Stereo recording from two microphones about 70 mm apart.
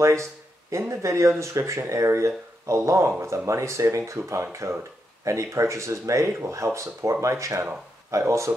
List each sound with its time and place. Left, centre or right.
0.7 s speech: right